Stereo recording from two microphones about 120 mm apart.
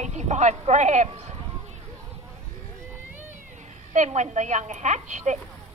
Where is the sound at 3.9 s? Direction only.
80° right.